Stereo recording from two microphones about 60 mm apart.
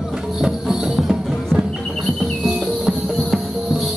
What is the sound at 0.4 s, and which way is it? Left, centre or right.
Music, centre.